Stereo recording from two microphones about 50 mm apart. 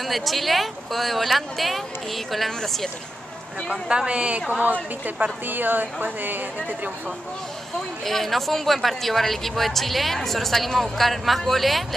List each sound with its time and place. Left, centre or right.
0.0 s speech: centre
3.9 s a woman's voice: centre; by 6.9 s right
8.0 s speech: centre